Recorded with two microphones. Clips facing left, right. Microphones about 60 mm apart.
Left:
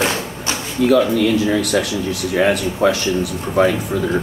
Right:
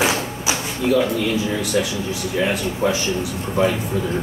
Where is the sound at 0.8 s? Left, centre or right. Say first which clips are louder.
Left 5 dB; left.